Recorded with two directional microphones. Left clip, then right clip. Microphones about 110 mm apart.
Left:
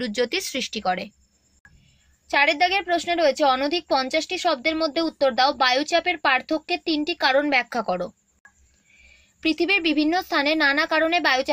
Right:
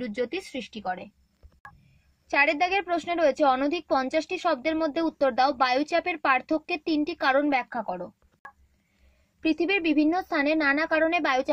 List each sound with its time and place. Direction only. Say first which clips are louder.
0.0 s speech: left 6 dB; 10° left (ahead or behind)
0.8 s speech: left 7 dB; 35° left (ahead or behind)
2.2 s speech: left 4 dB; 25° right (ahead or behind)
9.4 s speech: left 4 dB; 20° right (ahead or behind)